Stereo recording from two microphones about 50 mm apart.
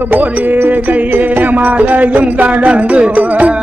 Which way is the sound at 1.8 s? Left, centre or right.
Right.